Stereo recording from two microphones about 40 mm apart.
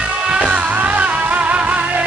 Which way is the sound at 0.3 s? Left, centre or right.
Right.